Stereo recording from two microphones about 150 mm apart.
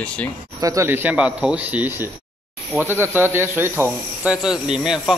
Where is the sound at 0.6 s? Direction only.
20° right (ahead or behind).